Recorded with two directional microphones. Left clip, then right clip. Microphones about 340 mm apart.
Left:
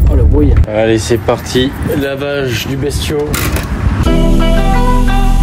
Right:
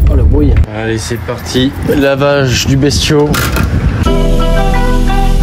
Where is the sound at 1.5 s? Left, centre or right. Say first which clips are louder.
Right 2 dB; centre.